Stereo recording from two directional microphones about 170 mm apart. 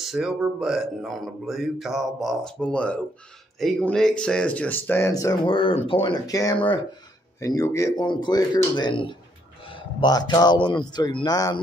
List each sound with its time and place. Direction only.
0.0 s speech: 5° right (ahead or behind); by 11.6 s 20° left (ahead or behind)